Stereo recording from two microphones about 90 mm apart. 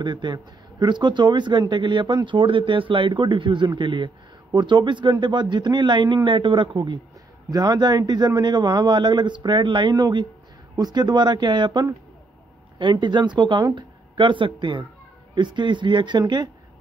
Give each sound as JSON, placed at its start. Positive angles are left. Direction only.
{"t": 0.0, "sound": "speech", "side_deg": -55}
{"t": 12.9, "sound": "speech", "side_deg": -55}